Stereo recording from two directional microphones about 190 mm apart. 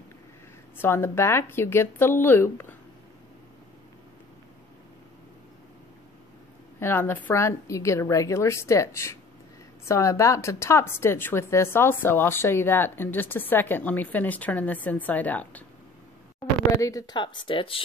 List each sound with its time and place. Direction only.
0.7 s speech: 10° left (ahead or behind)
6.8 s speech: 10° left (ahead or behind)
16.8 s speech: 20° left (ahead or behind)